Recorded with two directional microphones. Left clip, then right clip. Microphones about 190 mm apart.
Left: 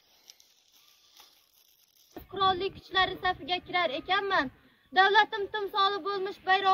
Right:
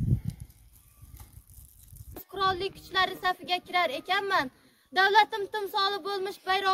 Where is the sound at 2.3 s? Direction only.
20° right (ahead or behind).